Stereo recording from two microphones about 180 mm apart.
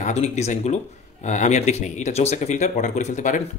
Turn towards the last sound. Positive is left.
turn(degrees=40)  # may be behind; listen again after turning